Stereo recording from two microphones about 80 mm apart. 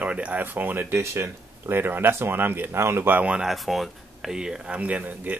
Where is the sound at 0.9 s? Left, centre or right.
Right.